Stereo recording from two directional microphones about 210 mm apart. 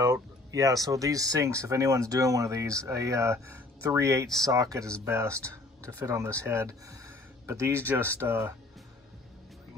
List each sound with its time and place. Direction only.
0.0 s speech: 15° right (ahead or behind)